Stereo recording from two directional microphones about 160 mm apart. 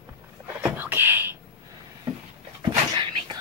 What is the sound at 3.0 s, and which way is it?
Dog, 30° right (ahead or behind).